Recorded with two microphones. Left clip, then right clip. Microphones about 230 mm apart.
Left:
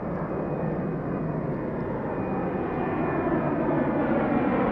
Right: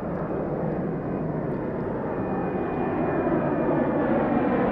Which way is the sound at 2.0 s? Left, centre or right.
Left.